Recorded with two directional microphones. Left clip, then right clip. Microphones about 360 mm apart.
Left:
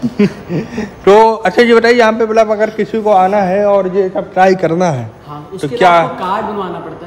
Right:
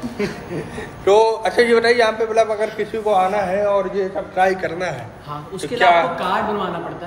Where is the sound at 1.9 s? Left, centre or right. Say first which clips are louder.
Left 7 dB; left.